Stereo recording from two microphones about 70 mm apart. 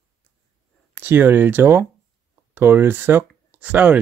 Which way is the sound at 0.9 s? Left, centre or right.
Right.